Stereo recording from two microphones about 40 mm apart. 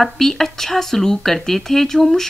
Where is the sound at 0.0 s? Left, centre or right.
Centre.